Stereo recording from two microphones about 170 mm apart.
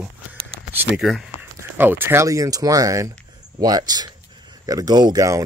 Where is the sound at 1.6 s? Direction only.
10° right (ahead or behind).